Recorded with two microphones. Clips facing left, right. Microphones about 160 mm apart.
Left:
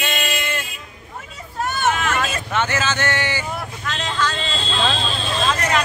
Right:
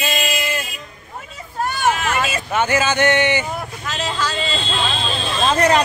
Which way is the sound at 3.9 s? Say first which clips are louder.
Even; 5° right (ahead or behind).